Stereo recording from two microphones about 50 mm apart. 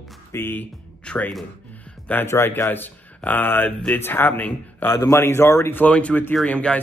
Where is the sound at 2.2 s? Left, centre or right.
Left.